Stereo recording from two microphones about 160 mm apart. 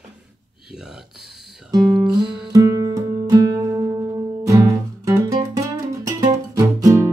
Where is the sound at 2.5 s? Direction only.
20° right (ahead or behind).